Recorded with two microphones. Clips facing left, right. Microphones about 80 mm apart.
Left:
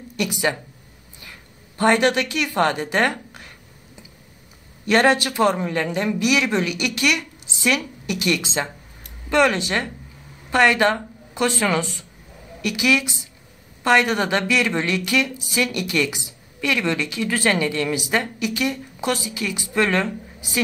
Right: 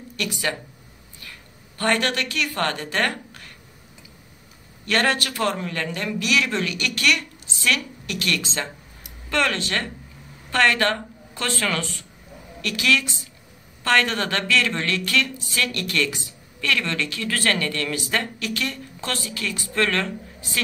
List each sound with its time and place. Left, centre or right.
0.1 s speech: centre
1.8 s a woman's voice: centre
4.8 s a woman's voice: centre